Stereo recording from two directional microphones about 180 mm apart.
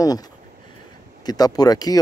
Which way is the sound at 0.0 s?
20° left (ahead or behind).